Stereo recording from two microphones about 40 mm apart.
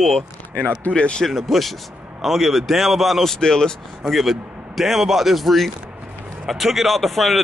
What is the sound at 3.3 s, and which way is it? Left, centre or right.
Speech, centre.